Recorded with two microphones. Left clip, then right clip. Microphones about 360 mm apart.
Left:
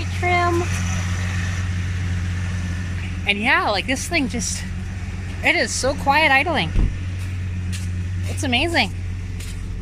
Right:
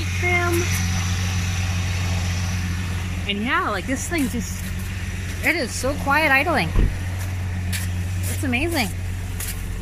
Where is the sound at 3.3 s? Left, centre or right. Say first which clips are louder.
Left 4 dB; centre.